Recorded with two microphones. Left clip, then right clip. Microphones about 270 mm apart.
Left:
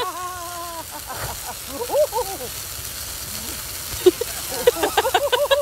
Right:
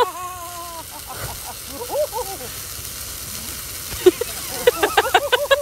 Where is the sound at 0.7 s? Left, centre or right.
Centre.